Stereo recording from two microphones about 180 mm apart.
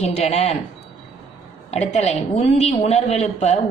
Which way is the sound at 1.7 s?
35° left (ahead or behind).